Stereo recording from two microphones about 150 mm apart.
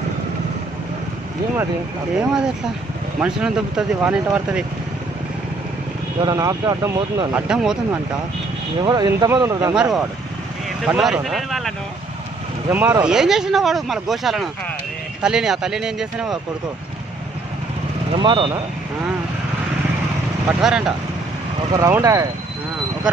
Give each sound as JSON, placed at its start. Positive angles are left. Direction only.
{"t": 2.1, "sound": "speech", "side_deg": -5}
{"t": 6.2, "sound": "speech", "side_deg": -25}
{"t": 7.4, "sound": "speech", "side_deg": -5}
{"t": 8.8, "sound": "speech", "side_deg": -25}
{"t": 9.8, "sound": "speech", "side_deg": -5}
{"t": 12.6, "sound": "speech", "side_deg": -15}
{"t": 18.1, "sound": "speech", "side_deg": -35}
{"t": 20.4, "sound": "speech", "side_deg": -5}
{"t": 21.7, "sound": "speech", "side_deg": -20}